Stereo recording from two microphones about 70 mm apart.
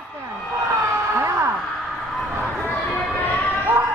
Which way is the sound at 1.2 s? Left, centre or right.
Right.